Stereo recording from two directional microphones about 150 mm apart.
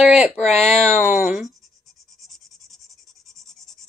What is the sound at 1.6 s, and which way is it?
Scratch, centre (ahead or behind).